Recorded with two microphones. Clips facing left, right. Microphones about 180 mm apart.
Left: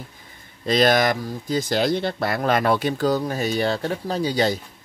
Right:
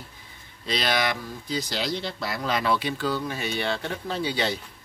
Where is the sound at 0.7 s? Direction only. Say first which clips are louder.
Left 8 dB; 45° left (ahead or behind).